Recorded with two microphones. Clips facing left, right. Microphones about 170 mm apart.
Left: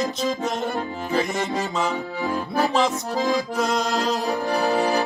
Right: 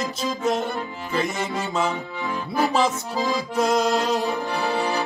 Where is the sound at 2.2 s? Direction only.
40° left (ahead or behind).